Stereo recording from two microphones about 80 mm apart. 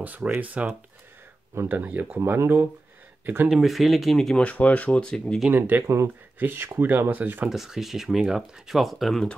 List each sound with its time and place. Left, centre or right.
0.0 s speech: right
3.4 s speech: centre
4.5 s speech: centre
5.5 s speech: right
7.4 s speech: centre